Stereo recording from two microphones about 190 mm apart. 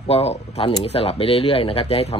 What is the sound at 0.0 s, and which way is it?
A man's voice, 30° left (ahead or behind).